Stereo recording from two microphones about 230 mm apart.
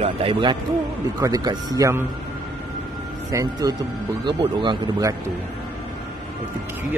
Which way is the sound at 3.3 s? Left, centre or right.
Centre.